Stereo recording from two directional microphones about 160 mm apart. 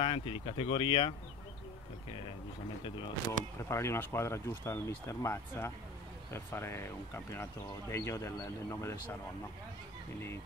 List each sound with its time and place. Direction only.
0.0 s speech: 30° left (ahead or behind)
3.6 s speech: 15° left (ahead or behind)